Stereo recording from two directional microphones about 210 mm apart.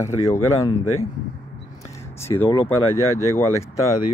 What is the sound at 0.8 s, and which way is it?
Speech, 90° left.